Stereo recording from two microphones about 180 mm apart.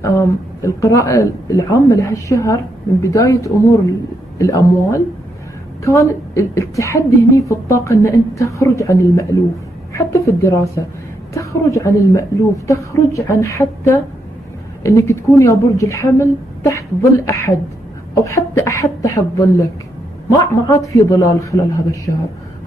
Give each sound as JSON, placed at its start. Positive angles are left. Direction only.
{"t": 0.0, "sound": "speech", "side_deg": 15}
{"t": 14.8, "sound": "speech", "side_deg": 15}